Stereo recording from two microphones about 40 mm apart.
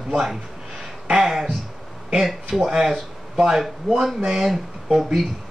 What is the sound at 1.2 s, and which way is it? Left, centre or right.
Speech, centre.